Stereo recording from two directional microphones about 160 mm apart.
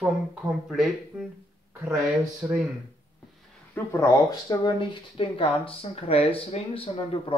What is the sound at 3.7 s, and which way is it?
Speech, 15° left (ahead or behind).